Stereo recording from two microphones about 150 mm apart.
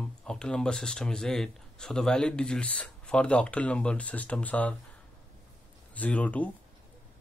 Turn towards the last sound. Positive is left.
turn(degrees=10)  # may be behind; listen again after turning